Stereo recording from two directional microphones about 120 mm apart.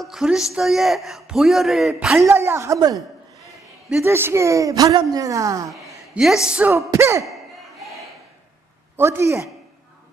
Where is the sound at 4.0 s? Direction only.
20° right (ahead or behind).